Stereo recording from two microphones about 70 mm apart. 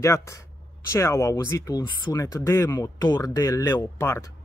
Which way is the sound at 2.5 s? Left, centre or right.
Left.